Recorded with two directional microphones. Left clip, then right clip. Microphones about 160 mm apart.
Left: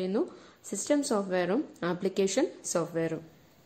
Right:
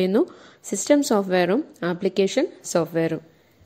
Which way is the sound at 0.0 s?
40° right (ahead or behind).